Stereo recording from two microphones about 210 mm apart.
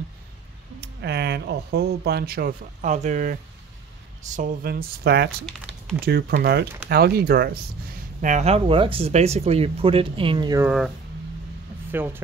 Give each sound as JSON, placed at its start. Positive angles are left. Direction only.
{"t": 0.7, "sound": "speech", "side_deg": -50}
{"t": 8.2, "sound": "speech", "side_deg": -35}
{"t": 11.9, "sound": "speech", "side_deg": -10}